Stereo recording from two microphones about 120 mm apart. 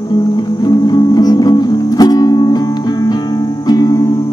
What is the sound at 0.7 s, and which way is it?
Music, 35° left (ahead or behind).